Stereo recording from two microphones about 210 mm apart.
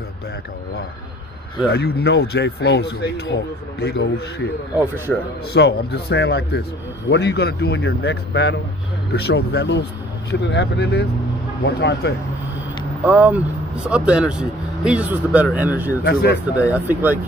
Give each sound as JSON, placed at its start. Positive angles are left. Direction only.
{"t": 1.7, "sound": "speech", "side_deg": 50}
{"t": 4.7, "sound": "speech", "side_deg": -10}
{"t": 5.5, "sound": "speech", "side_deg": 55}
{"t": 13.0, "sound": "speech", "side_deg": -10}
{"t": 16.0, "sound": "speech", "side_deg": 45}
{"t": 16.5, "sound": "speech", "side_deg": -5}